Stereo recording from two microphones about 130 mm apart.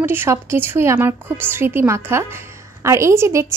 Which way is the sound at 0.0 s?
15° right (ahead or behind).